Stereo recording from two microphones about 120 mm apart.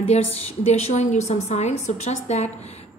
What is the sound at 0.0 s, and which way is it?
A woman's voice, 60° left (ahead or behind).